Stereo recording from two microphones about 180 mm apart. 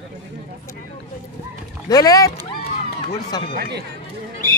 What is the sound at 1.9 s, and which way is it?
Speech, 20° left (ahead or behind).